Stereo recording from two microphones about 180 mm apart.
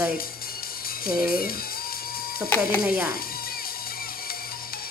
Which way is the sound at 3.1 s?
55° left (ahead or behind).